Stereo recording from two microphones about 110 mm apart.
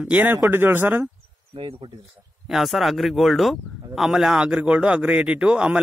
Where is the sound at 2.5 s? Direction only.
Centre (ahead or behind).